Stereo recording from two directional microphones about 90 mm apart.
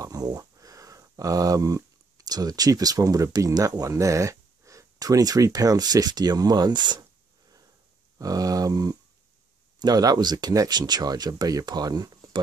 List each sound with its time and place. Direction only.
0.0 s speech: 45° right (ahead or behind)
8.2 s a sound: 40° right (ahead or behind)
9.8 s speech: 50° right (ahead or behind)